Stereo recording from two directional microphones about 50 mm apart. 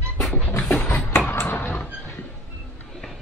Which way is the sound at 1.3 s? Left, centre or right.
Left.